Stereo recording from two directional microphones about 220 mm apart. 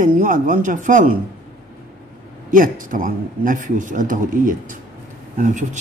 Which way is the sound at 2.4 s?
40° right (ahead or behind).